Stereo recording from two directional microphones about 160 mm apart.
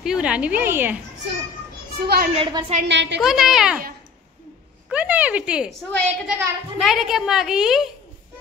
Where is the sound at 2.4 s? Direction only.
30° right (ahead or behind).